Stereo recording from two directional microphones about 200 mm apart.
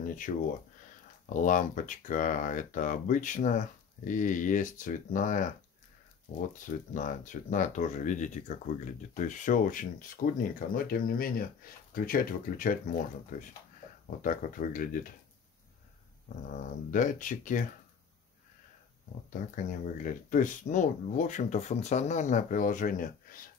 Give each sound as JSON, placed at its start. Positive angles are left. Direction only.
{"t": 0.3, "sound": "speech", "side_deg": 40}
{"t": 6.6, "sound": "speech", "side_deg": 40}
{"t": 16.9, "sound": "speech", "side_deg": 40}
{"t": 19.3, "sound": "speech", "side_deg": 40}